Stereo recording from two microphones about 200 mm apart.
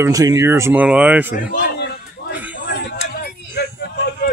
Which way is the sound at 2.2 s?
55° left (ahead or behind).